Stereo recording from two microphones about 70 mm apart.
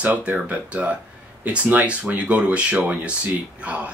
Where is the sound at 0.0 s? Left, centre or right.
Right.